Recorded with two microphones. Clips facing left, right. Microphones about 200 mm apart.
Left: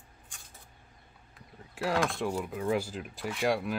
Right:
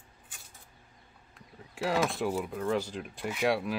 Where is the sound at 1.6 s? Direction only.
Centre (ahead or behind).